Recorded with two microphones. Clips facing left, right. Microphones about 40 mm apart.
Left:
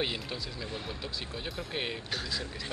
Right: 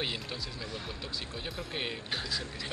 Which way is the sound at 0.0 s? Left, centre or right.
Centre.